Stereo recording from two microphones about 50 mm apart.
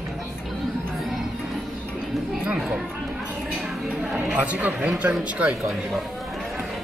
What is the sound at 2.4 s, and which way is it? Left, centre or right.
Speech, centre.